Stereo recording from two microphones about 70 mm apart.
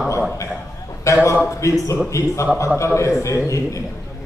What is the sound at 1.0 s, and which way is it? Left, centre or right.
A man's voice, left.